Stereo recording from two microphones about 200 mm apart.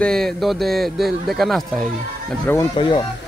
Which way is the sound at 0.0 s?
Centre (ahead or behind).